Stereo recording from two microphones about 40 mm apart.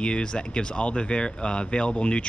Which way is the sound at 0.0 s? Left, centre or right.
Left.